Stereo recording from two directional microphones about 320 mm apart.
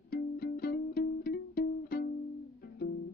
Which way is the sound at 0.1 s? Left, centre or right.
Left.